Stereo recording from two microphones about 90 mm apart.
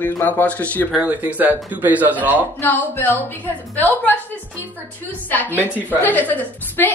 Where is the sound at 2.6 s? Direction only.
20° left (ahead or behind).